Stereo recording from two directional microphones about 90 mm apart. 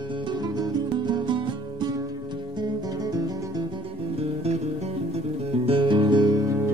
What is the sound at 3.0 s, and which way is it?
Music, 45° right (ahead or behind).